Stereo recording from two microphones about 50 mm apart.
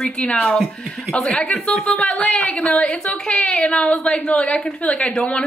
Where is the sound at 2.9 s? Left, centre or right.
Left.